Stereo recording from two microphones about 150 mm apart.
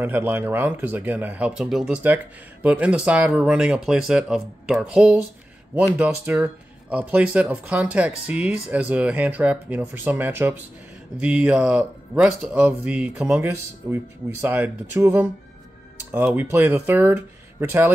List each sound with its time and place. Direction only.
0.0 s speech: 15° right (ahead or behind)
16.3 s speech: 20° right (ahead or behind)